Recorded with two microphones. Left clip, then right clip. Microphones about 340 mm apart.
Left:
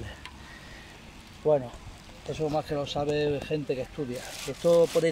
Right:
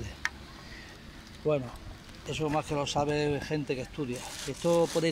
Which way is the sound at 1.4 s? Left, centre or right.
Left.